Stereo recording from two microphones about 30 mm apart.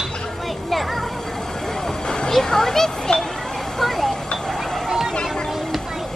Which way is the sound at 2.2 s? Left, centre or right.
Centre.